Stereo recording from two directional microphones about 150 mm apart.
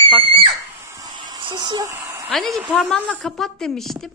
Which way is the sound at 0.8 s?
25° right (ahead or behind).